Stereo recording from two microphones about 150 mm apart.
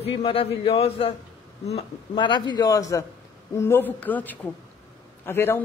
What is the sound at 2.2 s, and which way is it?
A woman's voice, 30° left (ahead or behind).